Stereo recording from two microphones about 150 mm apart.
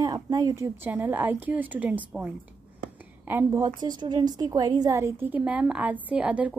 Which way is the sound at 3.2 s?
20° right (ahead or behind).